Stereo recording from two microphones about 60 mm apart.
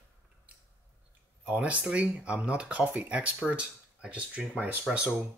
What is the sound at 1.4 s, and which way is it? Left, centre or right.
Speech, right.